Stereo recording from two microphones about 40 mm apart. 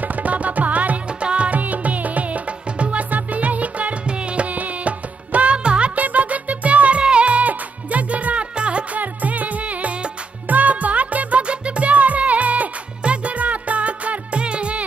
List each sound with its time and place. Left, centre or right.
0.0 s music: right
1.2 s music: right
1.6 s music: right
5.9 s music: right
9.0 s music: right